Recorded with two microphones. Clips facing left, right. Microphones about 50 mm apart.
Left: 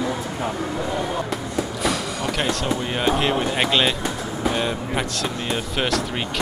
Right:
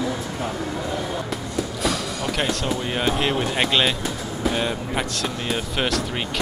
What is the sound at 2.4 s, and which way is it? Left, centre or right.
Speech, centre.